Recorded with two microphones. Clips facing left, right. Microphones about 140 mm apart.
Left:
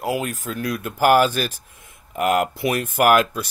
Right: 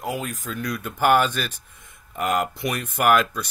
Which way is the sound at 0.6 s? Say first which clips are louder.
Left 3 dB; 5° left (ahead or behind).